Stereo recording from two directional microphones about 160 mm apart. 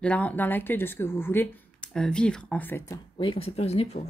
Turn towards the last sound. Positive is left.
turn(degrees=40)  # may be behind; listen again after turning